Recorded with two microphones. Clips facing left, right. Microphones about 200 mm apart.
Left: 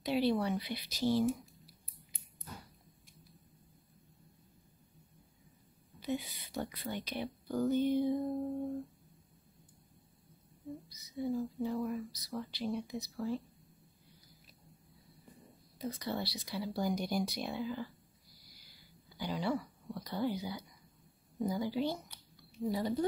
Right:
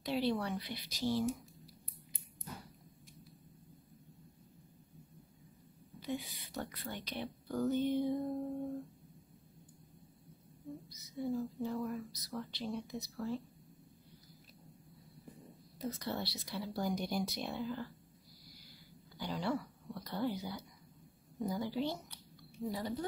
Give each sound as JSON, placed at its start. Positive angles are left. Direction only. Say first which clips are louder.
{"t": 0.0, "sound": "a woman's voice", "louder": "left 3 dB", "side_deg": 10}
{"t": 6.0, "sound": "speech", "louder": "left 3 dB", "side_deg": 10}
{"t": 11.1, "sound": "speech", "louder": "left 2 dB", "side_deg": 0}
{"t": 15.8, "sound": "speech", "louder": "left 1 dB", "side_deg": 0}
{"t": 19.1, "sound": "speech", "louder": "left 2 dB", "side_deg": 5}
{"t": 21.5, "sound": "a sound", "louder": "left 2 dB", "side_deg": 5}
{"t": 22.7, "sound": "a woman's voice", "louder": "left 5 dB", "side_deg": 15}